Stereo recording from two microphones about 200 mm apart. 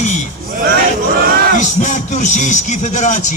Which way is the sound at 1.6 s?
35° left (ahead or behind).